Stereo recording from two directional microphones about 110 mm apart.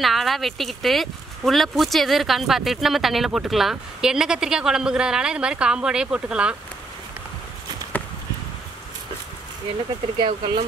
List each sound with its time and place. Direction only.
0.0 s speech: centre (ahead or behind)
10.2 s speech: 50° right (ahead or behind)